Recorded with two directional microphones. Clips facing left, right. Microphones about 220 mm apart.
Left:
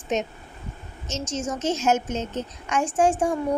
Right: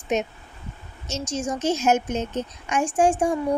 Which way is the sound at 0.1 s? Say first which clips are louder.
Right 1 dB; 10° right (ahead or behind).